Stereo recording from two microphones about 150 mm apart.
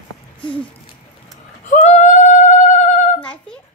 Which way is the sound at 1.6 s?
55° left (ahead or behind).